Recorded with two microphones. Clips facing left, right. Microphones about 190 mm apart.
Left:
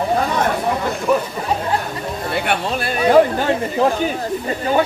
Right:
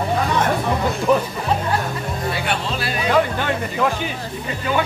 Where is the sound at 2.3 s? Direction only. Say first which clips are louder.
Left 3 dB; 55° left (ahead or behind).